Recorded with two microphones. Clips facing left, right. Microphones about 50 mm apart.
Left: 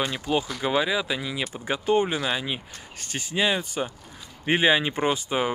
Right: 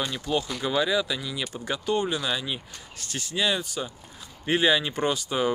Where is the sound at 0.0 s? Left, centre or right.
Left.